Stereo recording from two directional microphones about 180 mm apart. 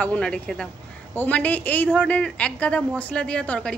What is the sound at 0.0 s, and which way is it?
A woman's voice, 5° left (ahead or behind).